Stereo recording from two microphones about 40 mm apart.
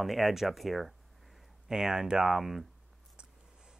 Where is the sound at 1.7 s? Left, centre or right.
Centre.